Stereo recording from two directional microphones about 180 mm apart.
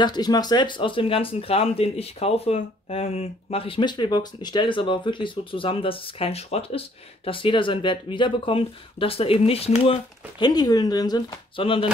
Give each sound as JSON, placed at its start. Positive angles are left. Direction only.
{"t": 0.0, "sound": "speech", "side_deg": 25}
{"t": 10.4, "sound": "speech", "side_deg": 20}